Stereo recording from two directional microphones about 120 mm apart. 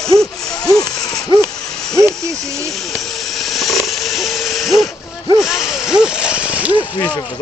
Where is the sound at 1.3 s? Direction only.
45° right (ahead or behind).